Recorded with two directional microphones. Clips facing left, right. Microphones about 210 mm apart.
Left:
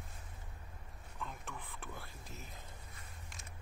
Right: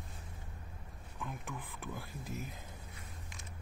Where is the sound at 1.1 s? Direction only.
10° right (ahead or behind).